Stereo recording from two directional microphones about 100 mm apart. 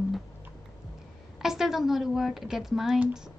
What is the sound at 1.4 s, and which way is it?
A woman's voice, 5° right (ahead or behind).